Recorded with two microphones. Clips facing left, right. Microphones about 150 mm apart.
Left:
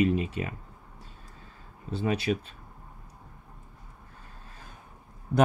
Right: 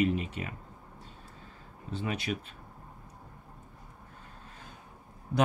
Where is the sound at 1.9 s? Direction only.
35° left (ahead or behind).